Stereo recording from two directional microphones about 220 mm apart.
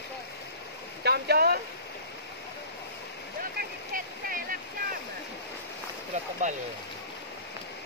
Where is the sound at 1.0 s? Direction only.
45° right (ahead or behind).